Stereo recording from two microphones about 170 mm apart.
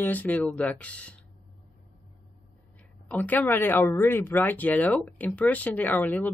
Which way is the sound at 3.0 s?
10° left (ahead or behind).